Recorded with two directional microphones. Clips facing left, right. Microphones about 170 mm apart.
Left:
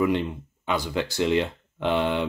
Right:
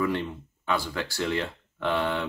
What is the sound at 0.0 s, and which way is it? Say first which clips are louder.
Speech: left 4 dB; 20° left (ahead or behind).